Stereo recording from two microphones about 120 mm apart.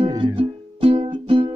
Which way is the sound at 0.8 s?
50° right (ahead or behind).